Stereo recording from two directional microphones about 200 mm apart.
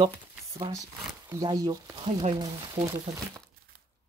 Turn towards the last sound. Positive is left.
turn(degrees=-20)  # may be behind; listen again after turning